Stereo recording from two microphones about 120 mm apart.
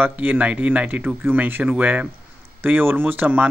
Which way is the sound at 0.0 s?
15° right (ahead or behind).